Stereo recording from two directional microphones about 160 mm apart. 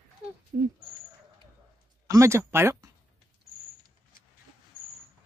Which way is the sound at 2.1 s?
20° right (ahead or behind).